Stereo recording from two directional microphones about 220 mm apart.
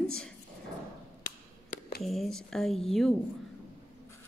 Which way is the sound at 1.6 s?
35° left (ahead or behind).